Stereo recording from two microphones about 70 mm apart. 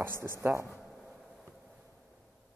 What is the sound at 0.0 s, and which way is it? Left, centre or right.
Speech, right.